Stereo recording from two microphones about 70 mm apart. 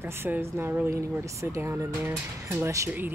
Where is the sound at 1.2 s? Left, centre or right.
Right.